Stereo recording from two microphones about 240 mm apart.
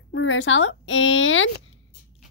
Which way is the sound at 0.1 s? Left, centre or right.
Left.